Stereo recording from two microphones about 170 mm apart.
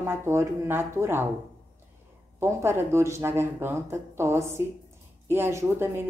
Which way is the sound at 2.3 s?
15° right (ahead or behind).